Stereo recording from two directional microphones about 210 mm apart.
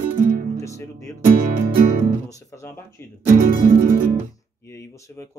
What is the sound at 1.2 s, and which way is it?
Music, 40° right (ahead or behind).